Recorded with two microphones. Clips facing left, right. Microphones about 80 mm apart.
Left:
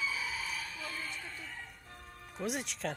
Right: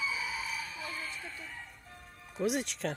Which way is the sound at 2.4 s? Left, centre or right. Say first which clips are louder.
Right 5 dB; centre.